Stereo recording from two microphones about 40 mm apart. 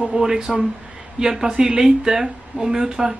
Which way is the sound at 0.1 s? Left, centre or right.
Centre.